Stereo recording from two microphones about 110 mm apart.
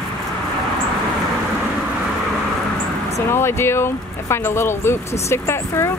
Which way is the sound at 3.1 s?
25° left (ahead or behind).